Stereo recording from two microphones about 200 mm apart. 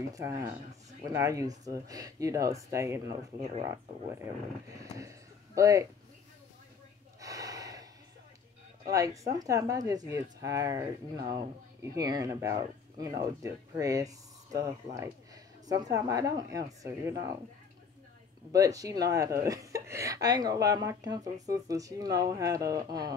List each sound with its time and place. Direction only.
0.1 s speech: 15° right (ahead or behind)
4.9 s a sound: 15° right (ahead or behind)
7.2 s gasp: 15° right (ahead or behind)
8.8 s speech: 15° right (ahead or behind)
18.5 s speech: 15° right (ahead or behind)